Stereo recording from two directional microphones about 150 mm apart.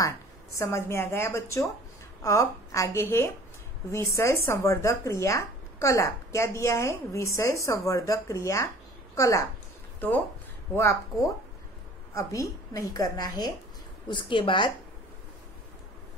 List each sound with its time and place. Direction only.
0.6 s a woman's voice: 15° left (ahead or behind); by 14.7 s 35° left (ahead or behind)